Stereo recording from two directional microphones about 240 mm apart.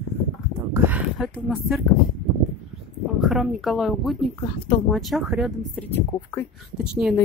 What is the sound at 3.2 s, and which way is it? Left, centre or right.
Speech, centre.